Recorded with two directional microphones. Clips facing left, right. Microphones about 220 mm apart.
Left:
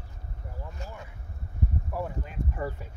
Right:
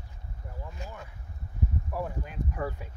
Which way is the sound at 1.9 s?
5° left (ahead or behind).